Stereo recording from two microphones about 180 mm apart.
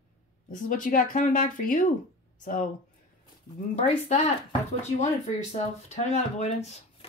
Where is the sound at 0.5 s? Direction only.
50° left (ahead or behind).